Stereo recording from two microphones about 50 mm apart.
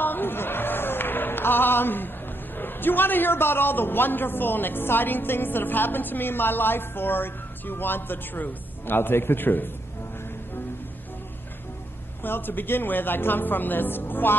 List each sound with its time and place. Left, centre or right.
0.0 s speech: left
12.2 s a man's voice: left